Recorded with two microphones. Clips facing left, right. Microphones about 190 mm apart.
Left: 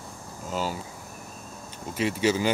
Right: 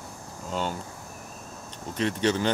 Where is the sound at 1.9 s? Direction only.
5° left (ahead or behind).